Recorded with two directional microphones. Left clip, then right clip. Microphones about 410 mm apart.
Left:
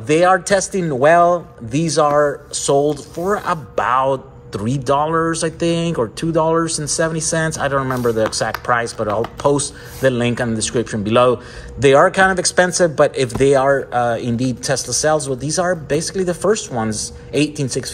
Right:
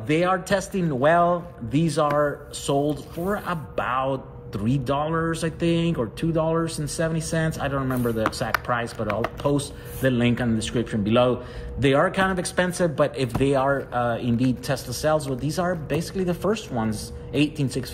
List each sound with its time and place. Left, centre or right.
0.1 s a man's voice: centre